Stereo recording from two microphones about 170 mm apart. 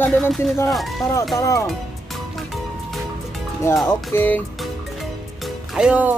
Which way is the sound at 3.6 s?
15° left (ahead or behind).